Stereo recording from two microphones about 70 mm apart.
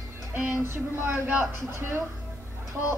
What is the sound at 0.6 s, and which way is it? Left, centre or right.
Speech, right.